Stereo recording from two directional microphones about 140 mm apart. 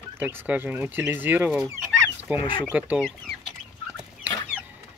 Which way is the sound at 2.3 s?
35° left (ahead or behind).